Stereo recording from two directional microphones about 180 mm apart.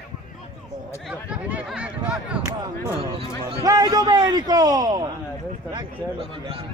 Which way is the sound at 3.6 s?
20° right (ahead or behind).